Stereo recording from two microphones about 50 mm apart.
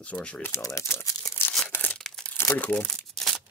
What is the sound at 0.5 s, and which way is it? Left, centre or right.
Speech, left.